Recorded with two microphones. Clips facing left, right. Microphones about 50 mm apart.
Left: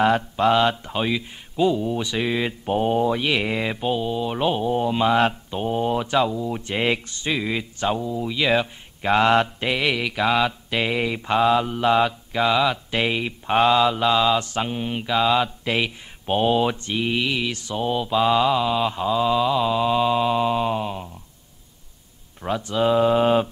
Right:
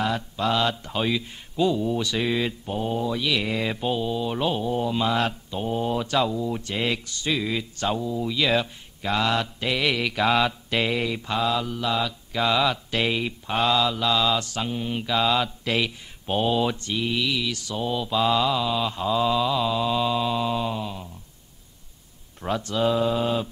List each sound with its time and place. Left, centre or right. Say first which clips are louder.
0.0 s mantra: left 7 dB; left; by 2.5 s centre
2.6 s mantra: left 6 dB; left; by 6.6 s centre
6.6 s mantra: left 4 dB; left
9.0 s mantra: left 6 dB; left
9.7 s mantra: left 2 dB; centre; by 12.2 s left
12.3 s mantra: left 3 dB; centre; by 21.1 s left
22.4 s mantra: left 2 dB; centre; by 23.5 s left